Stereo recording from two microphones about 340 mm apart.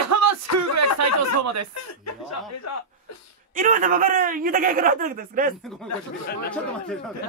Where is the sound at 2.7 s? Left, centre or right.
Left.